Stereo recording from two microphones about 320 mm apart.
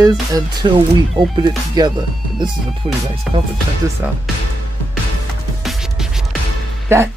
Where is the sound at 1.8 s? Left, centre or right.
Centre.